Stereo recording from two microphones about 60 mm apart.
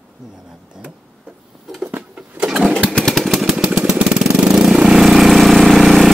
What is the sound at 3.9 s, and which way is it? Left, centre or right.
Vehicle, centre.